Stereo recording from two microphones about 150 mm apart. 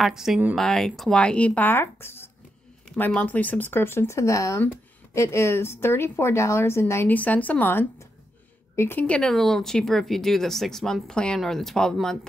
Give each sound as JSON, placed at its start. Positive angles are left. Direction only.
{"t": 0.0, "sound": "a woman's voice", "side_deg": -5}